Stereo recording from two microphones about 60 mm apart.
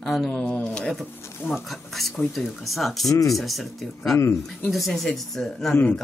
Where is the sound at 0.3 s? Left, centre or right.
Centre.